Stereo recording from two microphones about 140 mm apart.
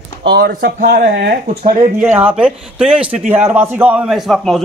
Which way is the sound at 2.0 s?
10° right (ahead or behind).